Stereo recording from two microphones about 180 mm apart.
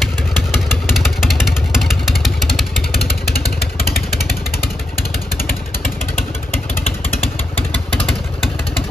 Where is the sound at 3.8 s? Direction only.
55° left (ahead or behind).